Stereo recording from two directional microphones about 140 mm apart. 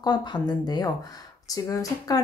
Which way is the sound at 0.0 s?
30° left (ahead or behind).